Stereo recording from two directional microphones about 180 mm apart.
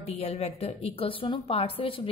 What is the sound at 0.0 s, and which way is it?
A woman's voice, 35° left (ahead or behind).